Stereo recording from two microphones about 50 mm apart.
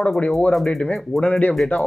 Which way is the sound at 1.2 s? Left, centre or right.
Left.